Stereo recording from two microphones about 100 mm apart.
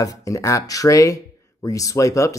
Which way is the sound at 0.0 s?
35° left (ahead or behind).